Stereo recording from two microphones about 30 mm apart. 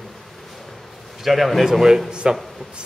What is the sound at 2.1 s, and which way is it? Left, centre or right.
Speech, right.